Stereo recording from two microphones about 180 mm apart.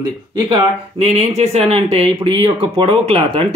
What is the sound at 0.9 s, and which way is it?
Speech, 35° right (ahead or behind).